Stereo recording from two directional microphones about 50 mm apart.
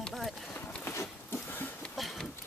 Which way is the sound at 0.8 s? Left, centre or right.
Left.